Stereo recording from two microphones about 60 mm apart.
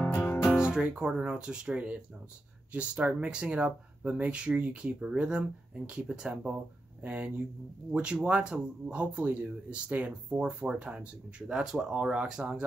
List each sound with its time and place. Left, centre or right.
0.0 s music: left
0.7 s speech: centre